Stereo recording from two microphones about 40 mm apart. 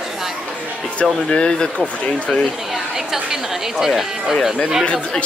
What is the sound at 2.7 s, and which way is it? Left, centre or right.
Speech, centre.